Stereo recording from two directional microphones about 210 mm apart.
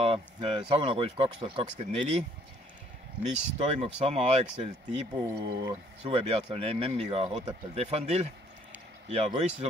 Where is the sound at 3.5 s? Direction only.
30° right (ahead or behind).